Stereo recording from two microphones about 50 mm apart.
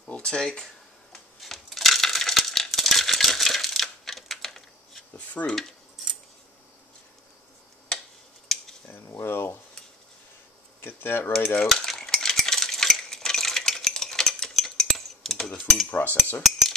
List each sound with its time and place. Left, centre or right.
0.0 s speech: left
1.4 s coin: centre
5.1 s dishes: left
5.5 s keys jangling: centre
8.5 s cutlery: centre
8.9 s a sound: left
10.8 s a sound: left
11.6 s stir: centre
15.9 s cutlery: left